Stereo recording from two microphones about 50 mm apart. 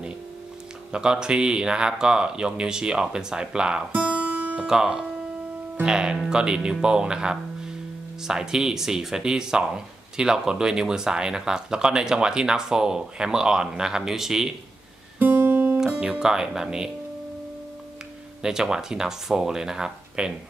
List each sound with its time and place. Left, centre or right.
0.9 s speech: centre
3.9 s music: right
4.6 s speech: centre
15.1 s guitar: right
16.0 s speech: centre
18.4 s speech: centre